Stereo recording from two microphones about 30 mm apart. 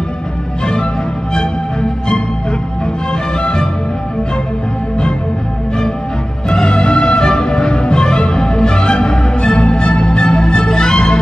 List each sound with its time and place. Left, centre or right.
1.3 s music: left
6.5 s music: left